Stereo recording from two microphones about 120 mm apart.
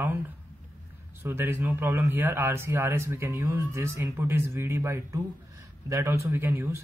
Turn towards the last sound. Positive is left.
turn(degrees=-20)  # may be behind; listen again after turning